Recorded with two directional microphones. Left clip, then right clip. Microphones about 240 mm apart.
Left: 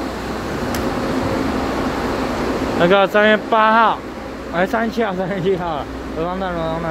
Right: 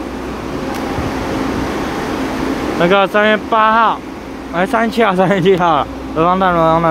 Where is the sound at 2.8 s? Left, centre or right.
Centre.